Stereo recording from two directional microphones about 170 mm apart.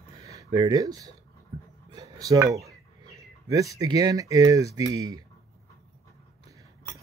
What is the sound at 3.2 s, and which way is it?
Speech, 20° right (ahead or behind).